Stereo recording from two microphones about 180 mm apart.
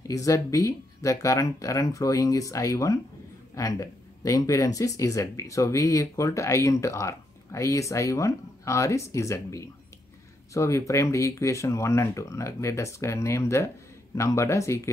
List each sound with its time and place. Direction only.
0.0 s speech: 20° left (ahead or behind)